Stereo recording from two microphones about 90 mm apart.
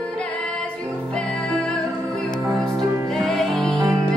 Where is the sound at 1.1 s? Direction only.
10° left (ahead or behind).